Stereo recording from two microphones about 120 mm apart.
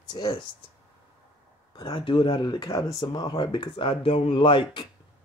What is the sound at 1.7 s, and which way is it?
Speech, 45° left (ahead or behind).